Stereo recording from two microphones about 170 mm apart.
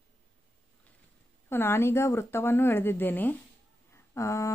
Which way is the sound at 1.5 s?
15° left (ahead or behind).